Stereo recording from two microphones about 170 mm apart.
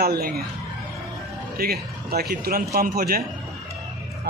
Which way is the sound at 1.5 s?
65° right (ahead or behind).